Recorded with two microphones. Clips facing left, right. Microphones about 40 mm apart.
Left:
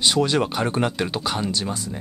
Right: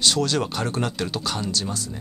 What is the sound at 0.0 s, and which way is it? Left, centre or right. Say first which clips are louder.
Speech: left 2 dB; centre.